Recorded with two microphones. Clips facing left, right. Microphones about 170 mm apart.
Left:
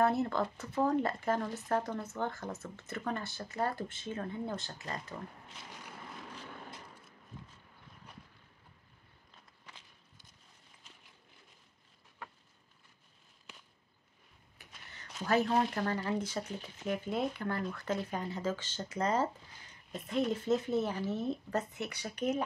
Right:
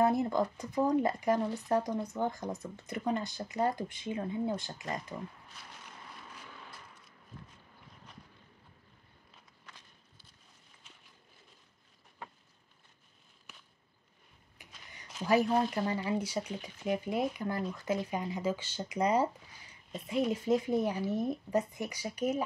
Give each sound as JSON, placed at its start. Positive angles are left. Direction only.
{"t": 0.0, "sound": "speech", "side_deg": -15}
{"t": 15.2, "sound": "speech", "side_deg": -10}